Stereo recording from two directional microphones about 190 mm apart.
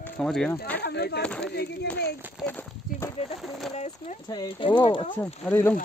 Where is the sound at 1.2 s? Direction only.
5° left (ahead or behind).